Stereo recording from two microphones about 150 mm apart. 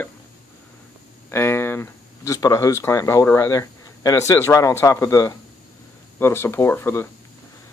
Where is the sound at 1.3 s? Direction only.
15° left (ahead or behind).